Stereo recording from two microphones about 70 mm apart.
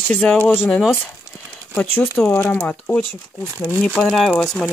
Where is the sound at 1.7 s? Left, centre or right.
Left.